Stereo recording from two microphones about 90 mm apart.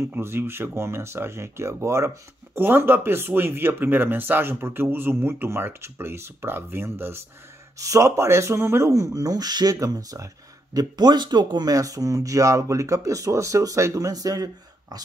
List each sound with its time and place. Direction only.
0.0 s speech: 25° right (ahead or behind); by 15.0 s 45° right (ahead or behind)